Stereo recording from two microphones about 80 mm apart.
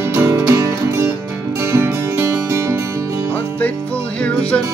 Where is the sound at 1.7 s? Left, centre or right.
Right.